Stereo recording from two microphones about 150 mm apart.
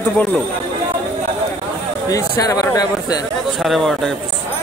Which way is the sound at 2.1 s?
20° left (ahead or behind).